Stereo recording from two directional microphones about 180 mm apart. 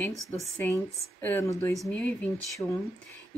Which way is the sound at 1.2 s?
10° left (ahead or behind).